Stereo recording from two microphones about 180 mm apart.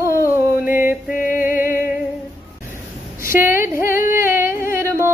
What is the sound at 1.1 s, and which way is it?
Music, 50° left (ahead or behind).